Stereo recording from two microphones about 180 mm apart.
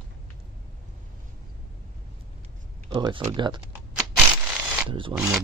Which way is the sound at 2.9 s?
25° right (ahead or behind).